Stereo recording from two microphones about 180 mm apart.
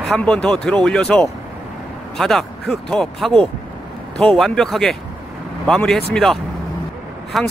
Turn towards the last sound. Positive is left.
turn(degrees=0)  # may be behind; listen again after turning